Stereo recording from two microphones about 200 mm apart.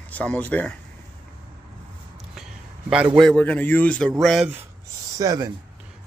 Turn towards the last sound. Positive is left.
turn(degrees=-20)  # may be behind; listen again after turning